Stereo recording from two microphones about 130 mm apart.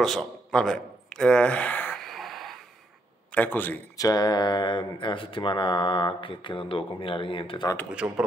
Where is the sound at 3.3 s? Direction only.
15° left (ahead or behind).